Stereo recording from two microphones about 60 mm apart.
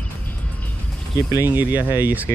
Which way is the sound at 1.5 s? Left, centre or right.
Right.